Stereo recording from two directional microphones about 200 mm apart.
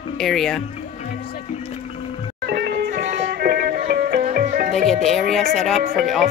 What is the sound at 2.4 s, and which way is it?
Music, 50° right (ahead or behind).